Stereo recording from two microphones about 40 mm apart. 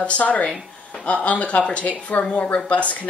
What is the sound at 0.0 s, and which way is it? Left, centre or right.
A woman's voice, left.